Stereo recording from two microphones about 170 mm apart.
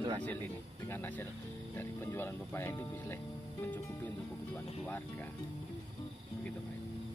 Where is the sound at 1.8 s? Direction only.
15° left (ahead or behind).